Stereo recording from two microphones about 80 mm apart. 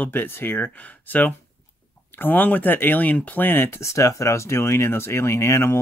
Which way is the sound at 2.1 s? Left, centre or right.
Left.